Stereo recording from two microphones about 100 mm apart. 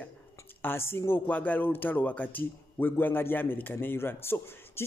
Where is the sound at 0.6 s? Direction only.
25° left (ahead or behind).